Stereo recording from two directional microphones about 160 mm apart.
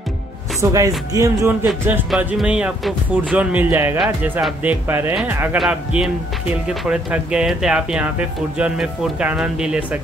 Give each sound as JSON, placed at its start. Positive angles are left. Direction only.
{"t": 0.6, "sound": "speech", "side_deg": -20}
{"t": 2.0, "sound": "speech", "side_deg": -5}